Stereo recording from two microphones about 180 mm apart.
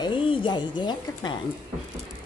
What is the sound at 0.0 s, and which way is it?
A woman's voice, 25° left (ahead or behind).